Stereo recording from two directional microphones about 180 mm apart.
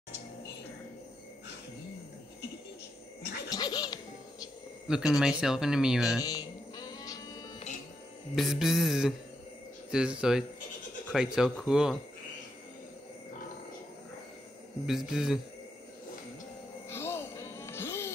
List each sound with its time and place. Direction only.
3.2 s laughter: 70° left (ahead or behind)
3.5 s music: 20° left (ahead or behind)
4.8 s speech: 5° right (ahead or behind)
6.2 s cat: 20° left (ahead or behind)
8.4 s speech: centre (ahead or behind)
14.9 s speech: centre (ahead or behind)
16.9 s music: 15° left (ahead or behind)